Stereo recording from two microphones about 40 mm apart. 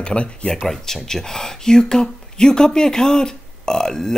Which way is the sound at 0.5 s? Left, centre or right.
Centre.